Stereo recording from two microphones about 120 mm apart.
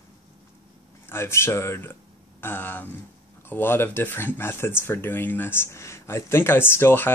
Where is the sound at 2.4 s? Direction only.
15° left (ahead or behind).